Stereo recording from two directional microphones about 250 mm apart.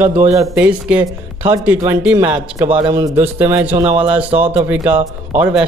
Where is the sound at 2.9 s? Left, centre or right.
Centre.